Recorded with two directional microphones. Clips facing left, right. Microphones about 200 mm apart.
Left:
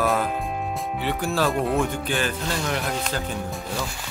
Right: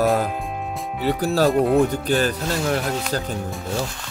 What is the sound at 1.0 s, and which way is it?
Speech, 40° right (ahead or behind).